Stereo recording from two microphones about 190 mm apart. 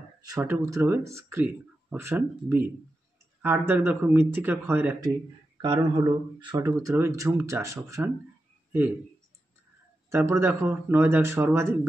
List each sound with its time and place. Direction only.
0.2 s speech: 15° right (ahead or behind)
5.6 s speech: 25° right (ahead or behind)
10.0 s speech: 15° right (ahead or behind)